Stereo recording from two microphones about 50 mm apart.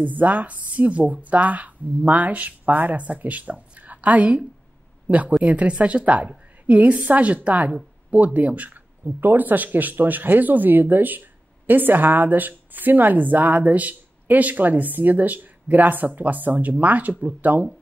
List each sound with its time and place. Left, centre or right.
0.0 s a woman's voice: right